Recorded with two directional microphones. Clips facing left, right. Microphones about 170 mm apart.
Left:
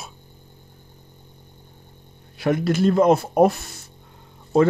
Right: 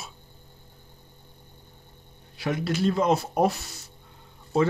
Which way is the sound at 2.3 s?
50° left (ahead or behind).